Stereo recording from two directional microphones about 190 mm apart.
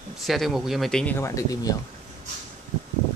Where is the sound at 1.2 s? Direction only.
20° left (ahead or behind).